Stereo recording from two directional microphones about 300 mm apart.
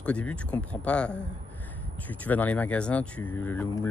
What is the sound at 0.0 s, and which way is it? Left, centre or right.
Speech, centre.